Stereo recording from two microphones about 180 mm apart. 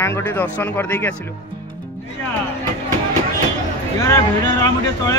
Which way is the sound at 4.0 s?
20° left (ahead or behind).